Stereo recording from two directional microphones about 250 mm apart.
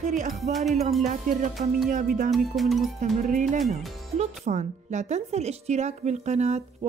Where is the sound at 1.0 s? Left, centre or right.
Right.